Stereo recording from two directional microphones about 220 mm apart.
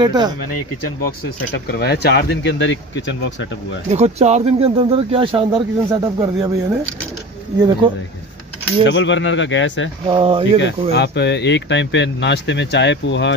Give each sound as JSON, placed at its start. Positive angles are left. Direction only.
{"t": 0.0, "sound": "speech", "side_deg": -20}
{"t": 1.5, "sound": "speech", "side_deg": 50}
{"t": 3.9, "sound": "speech", "side_deg": -30}
{"t": 7.5, "sound": "speech", "side_deg": -20}
{"t": 8.8, "sound": "speech", "side_deg": 55}
{"t": 10.0, "sound": "speech", "side_deg": -25}
{"t": 10.9, "sound": "speech", "side_deg": 50}